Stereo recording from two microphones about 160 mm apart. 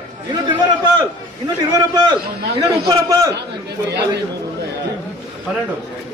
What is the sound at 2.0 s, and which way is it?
A man's voice, 25° right (ahead or behind).